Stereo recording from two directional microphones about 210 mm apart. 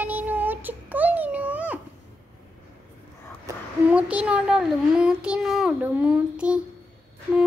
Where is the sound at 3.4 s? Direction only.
5° right (ahead or behind).